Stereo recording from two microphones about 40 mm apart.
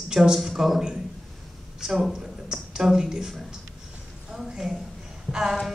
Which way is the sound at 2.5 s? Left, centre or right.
Right.